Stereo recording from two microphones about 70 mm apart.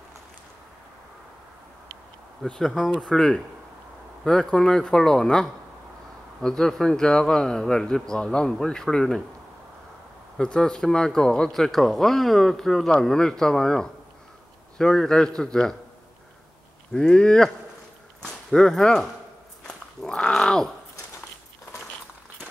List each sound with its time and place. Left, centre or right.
2.4 s speech: centre
10.3 s speech: centre
16.9 s speech: centre
19.7 s dog: centre